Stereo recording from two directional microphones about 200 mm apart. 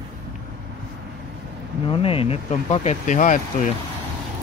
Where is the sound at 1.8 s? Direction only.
30° left (ahead or behind).